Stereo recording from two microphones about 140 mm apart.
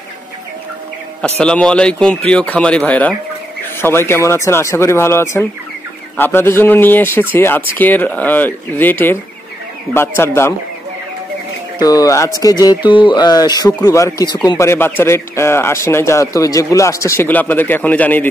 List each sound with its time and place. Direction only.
1.4 s speech: 5° left (ahead or behind)
11.8 s speech: 25° left (ahead or behind)